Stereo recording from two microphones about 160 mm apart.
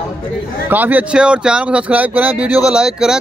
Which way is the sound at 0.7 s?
10° right (ahead or behind).